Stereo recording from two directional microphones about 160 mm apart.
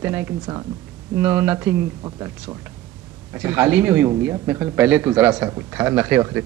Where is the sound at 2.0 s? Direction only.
25° right (ahead or behind).